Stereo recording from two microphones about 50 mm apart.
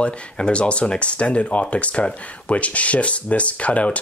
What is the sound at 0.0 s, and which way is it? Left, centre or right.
Speech, left.